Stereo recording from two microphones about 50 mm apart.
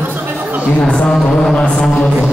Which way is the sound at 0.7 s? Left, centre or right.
Left.